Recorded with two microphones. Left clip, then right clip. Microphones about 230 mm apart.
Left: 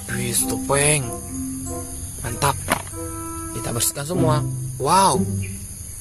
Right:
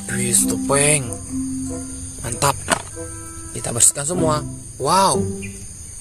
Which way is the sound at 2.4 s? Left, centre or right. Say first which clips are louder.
Right 2 dB; centre.